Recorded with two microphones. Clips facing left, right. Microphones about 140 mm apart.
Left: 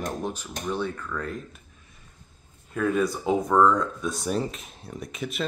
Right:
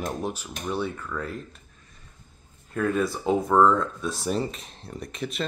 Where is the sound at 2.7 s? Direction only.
Centre (ahead or behind).